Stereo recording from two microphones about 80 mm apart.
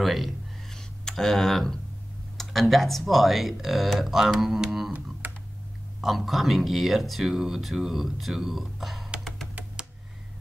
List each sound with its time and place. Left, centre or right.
0.0 s a sound: centre
2.3 s speech: centre
5.2 s computer keyboard: right
5.9 s speech: centre